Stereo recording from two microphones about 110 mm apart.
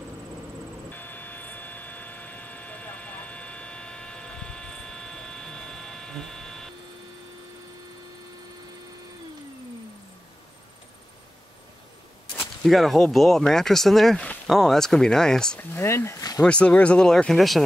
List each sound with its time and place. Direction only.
0.8 s vehicle: 15° left (ahead or behind)
12.4 s speech: centre (ahead or behind)
15.7 s speech: 20° left (ahead or behind)
16.3 s speech: 10° left (ahead or behind)